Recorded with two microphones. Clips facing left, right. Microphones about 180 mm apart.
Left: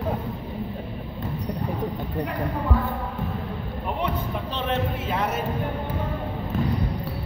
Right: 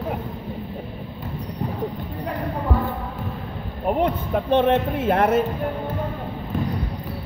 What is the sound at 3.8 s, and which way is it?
Speech, 55° right (ahead or behind).